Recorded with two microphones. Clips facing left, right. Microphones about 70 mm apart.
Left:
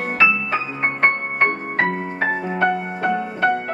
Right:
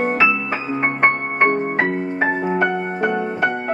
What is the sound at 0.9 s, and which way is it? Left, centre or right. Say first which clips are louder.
Music: right 1 dB; centre.